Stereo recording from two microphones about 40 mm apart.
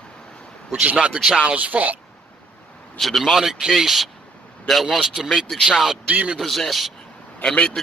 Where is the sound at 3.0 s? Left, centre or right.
Centre.